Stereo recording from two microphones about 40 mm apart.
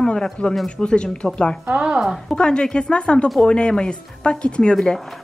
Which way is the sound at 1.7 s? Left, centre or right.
Centre.